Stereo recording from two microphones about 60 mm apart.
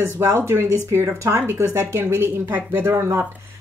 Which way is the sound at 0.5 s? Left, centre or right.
Right.